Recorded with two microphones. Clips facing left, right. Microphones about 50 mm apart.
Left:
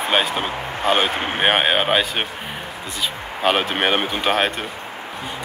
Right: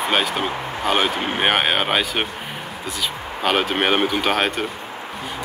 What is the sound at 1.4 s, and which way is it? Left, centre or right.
Speech, centre.